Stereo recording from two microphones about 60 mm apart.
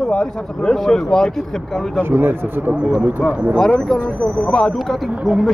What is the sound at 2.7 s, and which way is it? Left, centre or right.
Speech, centre.